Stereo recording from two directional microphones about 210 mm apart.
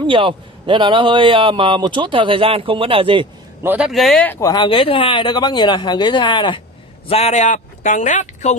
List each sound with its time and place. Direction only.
0.0 s a man's voice: 25° right (ahead or behind)
3.6 s speech: 5° right (ahead or behind); by 8.5 s 35° left (ahead or behind)